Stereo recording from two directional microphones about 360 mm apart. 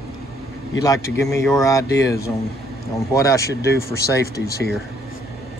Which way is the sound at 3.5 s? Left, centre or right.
Left.